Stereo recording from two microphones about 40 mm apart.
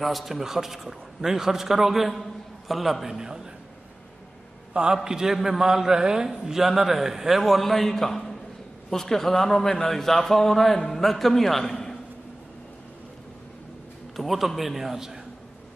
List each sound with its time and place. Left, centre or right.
0.0 s a man's voice: centre
4.7 s a man's voice: centre
14.1 s a man's voice: centre